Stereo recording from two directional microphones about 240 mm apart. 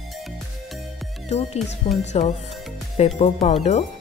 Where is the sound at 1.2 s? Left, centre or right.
Left.